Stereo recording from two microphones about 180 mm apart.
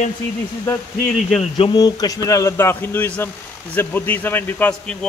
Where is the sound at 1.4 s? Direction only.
30° left (ahead or behind).